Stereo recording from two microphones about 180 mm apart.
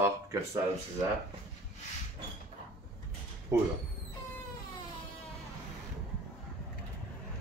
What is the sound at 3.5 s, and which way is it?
Speech, 15° right (ahead or behind).